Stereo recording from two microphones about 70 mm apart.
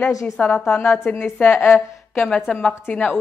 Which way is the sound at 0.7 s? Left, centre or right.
Left.